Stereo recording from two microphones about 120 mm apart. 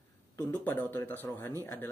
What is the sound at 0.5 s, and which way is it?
Speech, 15° left (ahead or behind).